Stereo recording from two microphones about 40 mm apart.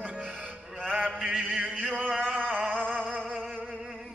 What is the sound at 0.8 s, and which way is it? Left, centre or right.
Mantra, right.